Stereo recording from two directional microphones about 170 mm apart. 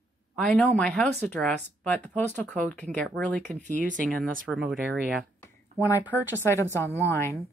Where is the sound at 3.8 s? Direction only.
50° right (ahead or behind).